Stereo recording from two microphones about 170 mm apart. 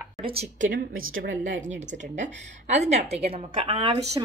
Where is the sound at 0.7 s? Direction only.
50° right (ahead or behind).